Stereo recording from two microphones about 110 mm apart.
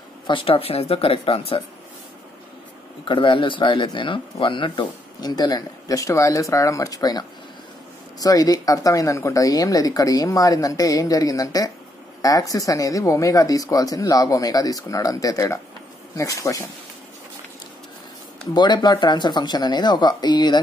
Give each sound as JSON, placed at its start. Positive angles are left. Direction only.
{"t": 0.3, "sound": "speech", "side_deg": 55}
{"t": 3.1, "sound": "speech", "side_deg": 50}
{"t": 18.4, "sound": "speech", "side_deg": 40}